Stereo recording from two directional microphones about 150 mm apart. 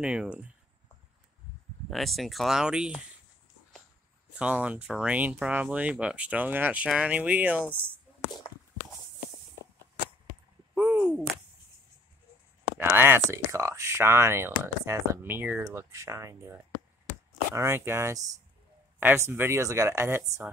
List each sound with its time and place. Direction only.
0.0 s speech: 10° right (ahead or behind)
1.9 s speech: centre (ahead or behind)
4.4 s speech: 10° right (ahead or behind)
7.8 s a sound: 30° left (ahead or behind)
10.7 s a sound: 5° right (ahead or behind)
12.7 s speech: 15° right (ahead or behind)
17.6 s speech: 15° right (ahead or behind)